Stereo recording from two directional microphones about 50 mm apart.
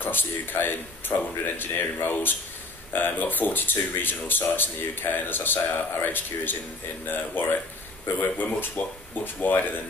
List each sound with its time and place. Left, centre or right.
0.0 s speech: left